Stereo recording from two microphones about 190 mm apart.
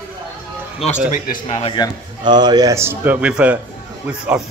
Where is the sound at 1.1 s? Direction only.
45° left (ahead or behind).